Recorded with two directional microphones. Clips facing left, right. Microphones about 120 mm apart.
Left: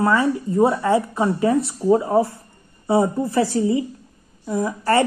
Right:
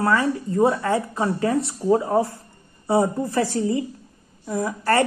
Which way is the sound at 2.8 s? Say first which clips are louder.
Left 2 dB; 20° left (ahead or behind).